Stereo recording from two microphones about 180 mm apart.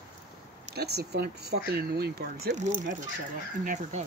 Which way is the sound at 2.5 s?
45° right (ahead or behind).